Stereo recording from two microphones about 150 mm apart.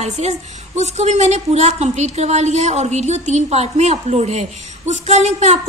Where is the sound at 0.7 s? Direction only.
50° right (ahead or behind).